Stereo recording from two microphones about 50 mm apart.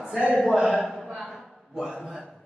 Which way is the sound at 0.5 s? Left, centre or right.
Centre.